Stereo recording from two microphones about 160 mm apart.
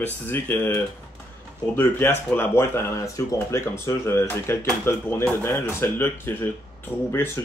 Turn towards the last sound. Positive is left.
turn(degrees=20)  # may be behind; listen again after turning